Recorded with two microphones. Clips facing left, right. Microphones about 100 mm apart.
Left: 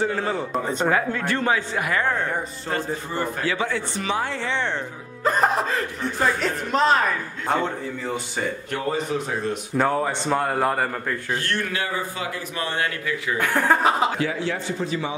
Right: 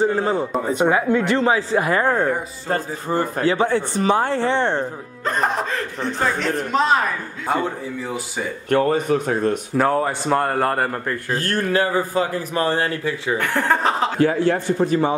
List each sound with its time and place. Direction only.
0.0 s speech: 25° right (ahead or behind)
0.5 s a man's voice: 5° right (ahead or behind)
0.8 s a man's voice: 20° right (ahead or behind); by 4.8 s 45° right (ahead or behind)
5.2 s a man's voice: centre (ahead or behind)
8.6 s a man's voice: 55° right (ahead or behind)
9.8 s a man's voice: centre (ahead or behind)
11.3 s a man's voice: 40° right (ahead or behind)
13.4 s speech: 10° left (ahead or behind)
14.1 s a man's voice: 45° right (ahead or behind)